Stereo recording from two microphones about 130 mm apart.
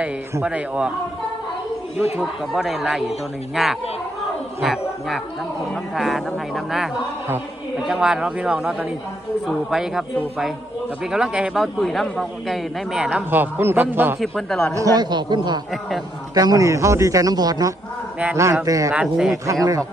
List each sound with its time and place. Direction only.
0.3 s speech: 10° right (ahead or behind)
2.1 s a man's voice: centre (ahead or behind)
11.1 s a man's voice: 5° right (ahead or behind)
14.2 s a man's voice: 5° left (ahead or behind)
14.8 s a man's voice: 35° right (ahead or behind)
18.9 s a man's voice: 5° right (ahead or behind)
19.3 s a man's voice: 25° right (ahead or behind)